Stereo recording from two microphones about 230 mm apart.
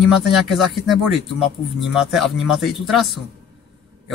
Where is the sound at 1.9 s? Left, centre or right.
Centre.